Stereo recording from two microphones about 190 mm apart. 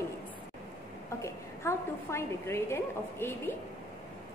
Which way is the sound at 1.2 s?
15° left (ahead or behind).